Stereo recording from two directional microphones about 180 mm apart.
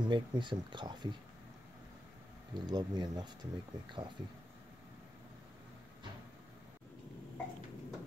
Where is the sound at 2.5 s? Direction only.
25° right (ahead or behind).